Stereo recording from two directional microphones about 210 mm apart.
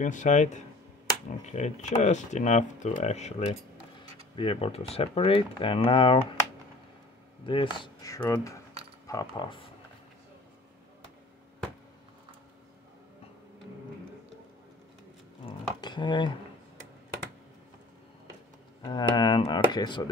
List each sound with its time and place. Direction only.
0.0 s speech: 35° left (ahead or behind)
7.4 s speech: 25° left (ahead or behind)
15.4 s dishes: 20° left (ahead or behind)
18.8 s speech: 20° left (ahead or behind)